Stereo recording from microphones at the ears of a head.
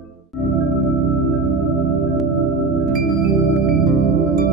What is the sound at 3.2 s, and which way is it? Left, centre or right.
Music, right.